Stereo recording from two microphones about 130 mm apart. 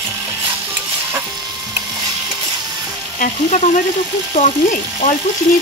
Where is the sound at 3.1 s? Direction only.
70° left (ahead or behind).